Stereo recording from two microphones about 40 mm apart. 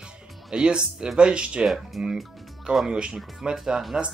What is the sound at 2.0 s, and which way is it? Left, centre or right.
Speech, centre.